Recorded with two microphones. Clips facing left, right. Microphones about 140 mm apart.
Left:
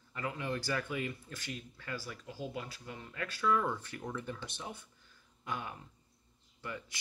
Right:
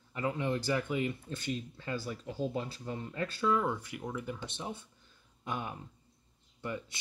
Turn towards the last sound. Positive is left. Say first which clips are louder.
# right 5 dB
turn(degrees=-25)  # may be behind; listen again after turning